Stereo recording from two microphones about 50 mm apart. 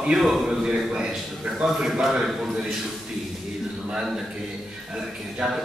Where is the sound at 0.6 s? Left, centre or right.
Centre.